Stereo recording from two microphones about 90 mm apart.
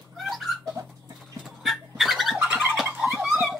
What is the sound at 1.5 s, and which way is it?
Bird, centre (ahead or behind).